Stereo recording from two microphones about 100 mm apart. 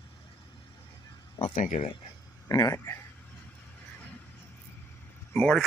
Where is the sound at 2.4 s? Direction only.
35° left (ahead or behind).